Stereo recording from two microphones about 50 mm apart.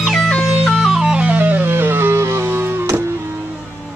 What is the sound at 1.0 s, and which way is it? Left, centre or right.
Music, centre.